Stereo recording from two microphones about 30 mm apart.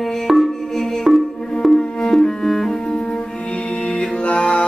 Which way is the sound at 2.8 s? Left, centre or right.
Left.